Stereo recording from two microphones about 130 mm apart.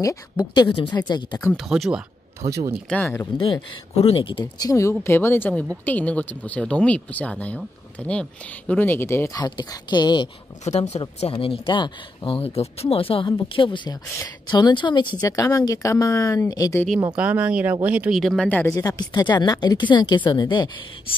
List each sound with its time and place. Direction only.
0.0 s speech: 30° left (ahead or behind)
1.6 s speech: 5° right (ahead or behind)
2.4 s speech: 25° right (ahead or behind)
2.9 s speech: 15° left (ahead or behind)
3.9 s speech: 50° left (ahead or behind)
4.6 s speech: 25° left (ahead or behind)
9.4 s speech: 35° left (ahead or behind)
10.6 s speech: 60° left (ahead or behind); by 16.8 s 25° left (ahead or behind)
17.1 s speech: 10° right (ahead or behind)
18.1 s speech: centre (ahead or behind)
18.5 s speech: 20° left (ahead or behind); by 20.7 s 35° left (ahead or behind)